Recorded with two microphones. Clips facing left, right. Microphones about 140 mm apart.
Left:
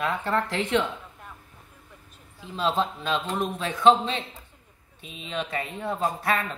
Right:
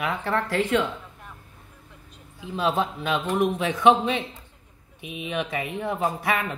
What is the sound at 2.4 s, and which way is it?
Speech, 15° right (ahead or behind).